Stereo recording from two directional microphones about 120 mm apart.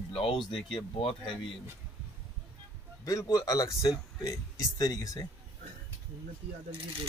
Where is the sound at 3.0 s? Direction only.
30° left (ahead or behind).